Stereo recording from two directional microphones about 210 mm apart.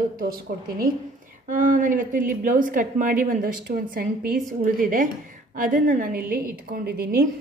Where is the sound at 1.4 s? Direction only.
40° right (ahead or behind).